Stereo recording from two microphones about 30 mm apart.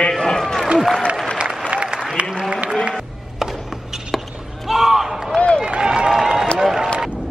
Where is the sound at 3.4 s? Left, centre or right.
Centre.